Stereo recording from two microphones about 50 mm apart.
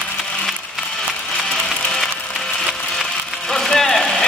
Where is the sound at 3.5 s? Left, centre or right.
Centre.